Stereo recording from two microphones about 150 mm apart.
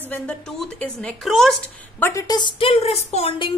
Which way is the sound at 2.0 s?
20° left (ahead or behind).